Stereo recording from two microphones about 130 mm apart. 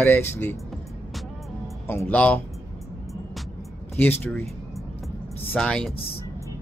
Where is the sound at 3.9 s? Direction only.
15° left (ahead or behind).